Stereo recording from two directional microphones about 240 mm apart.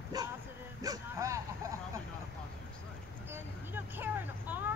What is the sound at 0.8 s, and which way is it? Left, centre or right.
Speech, centre.